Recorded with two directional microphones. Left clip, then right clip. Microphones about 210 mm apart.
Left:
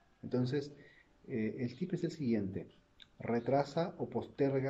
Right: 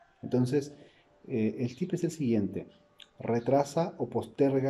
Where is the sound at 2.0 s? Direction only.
55° right (ahead or behind).